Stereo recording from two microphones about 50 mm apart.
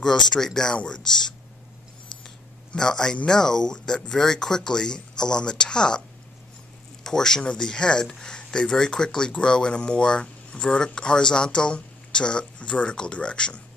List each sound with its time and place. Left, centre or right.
0.0 s speech: centre
2.7 s speech: centre